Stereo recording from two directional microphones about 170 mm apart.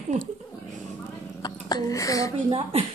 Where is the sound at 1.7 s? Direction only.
20° left (ahead or behind).